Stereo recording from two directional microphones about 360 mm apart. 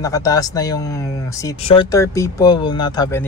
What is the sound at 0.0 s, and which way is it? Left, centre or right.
Speech, centre.